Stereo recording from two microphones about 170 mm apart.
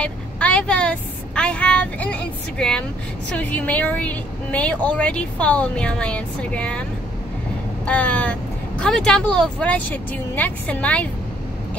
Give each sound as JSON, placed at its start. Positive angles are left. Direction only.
{"t": 0.0, "sound": "a woman's voice", "side_deg": 10}